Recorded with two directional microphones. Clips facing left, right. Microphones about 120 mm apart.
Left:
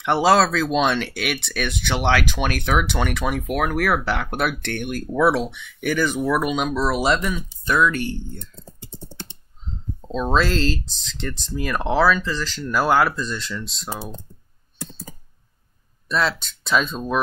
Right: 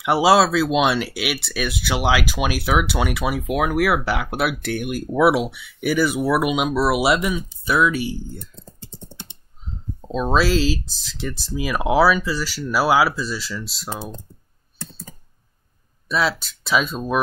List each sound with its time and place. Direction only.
0.0 s speech: 5° right (ahead or behind)
9.1 s typing: 15° right (ahead or behind)
10.0 s speech: 5° right (ahead or behind)
14.8 s computer keyboard: 10° left (ahead or behind)
16.1 s speech: 5° right (ahead or behind)